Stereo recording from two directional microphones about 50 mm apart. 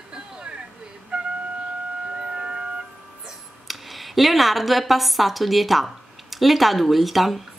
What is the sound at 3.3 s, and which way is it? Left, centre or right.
A woman's voice, centre.